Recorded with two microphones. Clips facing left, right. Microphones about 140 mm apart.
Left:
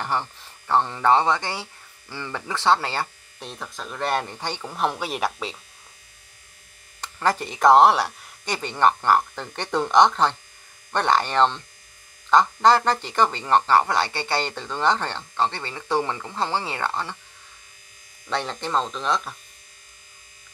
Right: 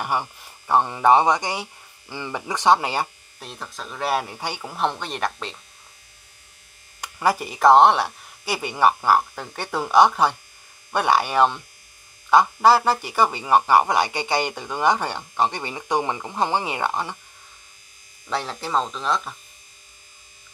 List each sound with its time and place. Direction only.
0.0 s speech: 10° right (ahead or behind)
3.3 s speech: centre (ahead or behind)
4.7 s speech: 5° left (ahead or behind)
7.0 s speech: 10° right (ahead or behind)
18.3 s speech: 5° right (ahead or behind)